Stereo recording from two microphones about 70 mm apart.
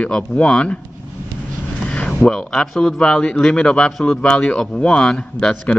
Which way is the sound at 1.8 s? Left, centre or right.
Centre.